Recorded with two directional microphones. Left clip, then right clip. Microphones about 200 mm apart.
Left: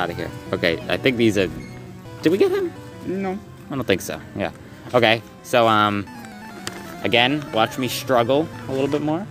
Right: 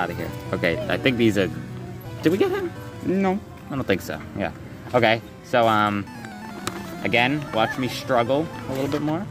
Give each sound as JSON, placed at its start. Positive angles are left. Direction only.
{"t": 0.0, "sound": "speech", "side_deg": 35}
{"t": 3.1, "sound": "speech", "side_deg": -35}
{"t": 3.7, "sound": "speech", "side_deg": 40}